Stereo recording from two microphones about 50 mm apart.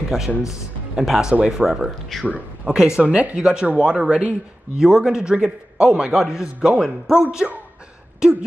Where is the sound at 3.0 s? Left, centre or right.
Right.